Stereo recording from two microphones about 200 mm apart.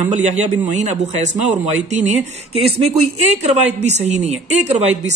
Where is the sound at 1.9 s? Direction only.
35° right (ahead or behind).